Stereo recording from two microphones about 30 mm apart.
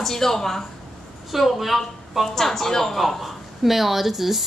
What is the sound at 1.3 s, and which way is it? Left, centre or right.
A woman's voice, centre.